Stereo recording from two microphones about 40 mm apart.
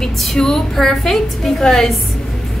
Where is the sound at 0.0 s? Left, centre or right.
Centre.